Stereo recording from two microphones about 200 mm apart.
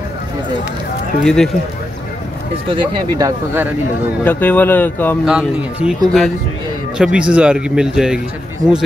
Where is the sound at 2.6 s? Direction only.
25° right (ahead or behind).